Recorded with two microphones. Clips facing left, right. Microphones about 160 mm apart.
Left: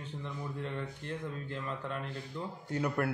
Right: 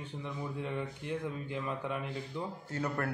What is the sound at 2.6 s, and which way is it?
Speech, 15° left (ahead or behind).